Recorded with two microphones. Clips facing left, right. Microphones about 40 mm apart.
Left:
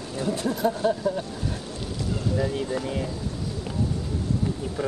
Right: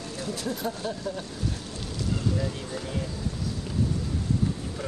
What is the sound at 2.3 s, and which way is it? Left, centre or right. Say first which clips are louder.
Speech: left 6 dB; centre.